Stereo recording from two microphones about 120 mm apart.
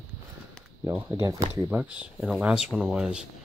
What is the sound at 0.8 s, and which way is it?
Speech, 25° right (ahead or behind).